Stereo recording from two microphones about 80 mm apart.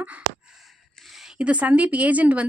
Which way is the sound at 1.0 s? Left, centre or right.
Centre.